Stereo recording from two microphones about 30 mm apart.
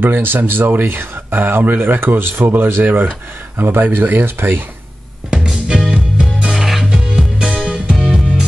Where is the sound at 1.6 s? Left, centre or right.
Right.